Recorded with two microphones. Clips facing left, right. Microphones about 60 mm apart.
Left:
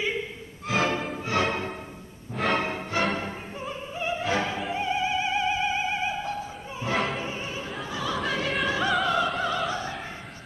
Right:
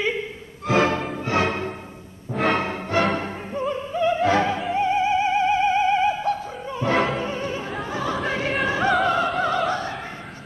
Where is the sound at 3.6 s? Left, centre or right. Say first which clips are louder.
Right 12 dB; right.